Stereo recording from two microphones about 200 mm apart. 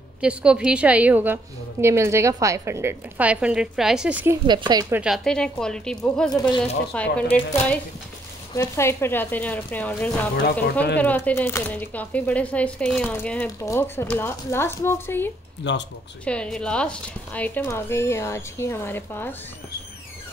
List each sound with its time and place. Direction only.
0.2 s a woman's voice: 5° right (ahead or behind)
4.5 s speech: 20° right (ahead or behind)
5.0 s speech: centre (ahead or behind)
15.6 s speech: 60° left (ahead or behind)
16.3 s speech: 5° left (ahead or behind)